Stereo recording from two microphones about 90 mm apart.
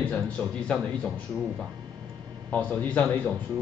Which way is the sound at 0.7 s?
5° left (ahead or behind).